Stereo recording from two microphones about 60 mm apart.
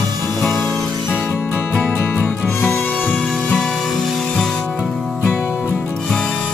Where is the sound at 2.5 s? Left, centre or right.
Left.